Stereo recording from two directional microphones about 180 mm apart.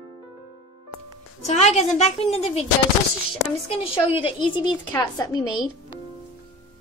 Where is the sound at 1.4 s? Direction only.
40° left (ahead or behind).